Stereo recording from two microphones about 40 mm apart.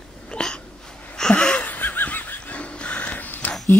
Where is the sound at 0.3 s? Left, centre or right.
Centre.